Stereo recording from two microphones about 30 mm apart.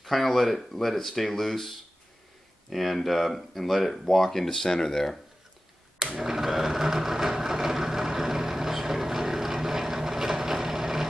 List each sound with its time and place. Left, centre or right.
0.0 s speech: centre
4.6 s speech: centre
6.1 s a sound: centre